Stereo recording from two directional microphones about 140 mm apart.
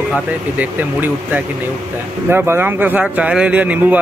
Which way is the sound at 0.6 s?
10° right (ahead or behind).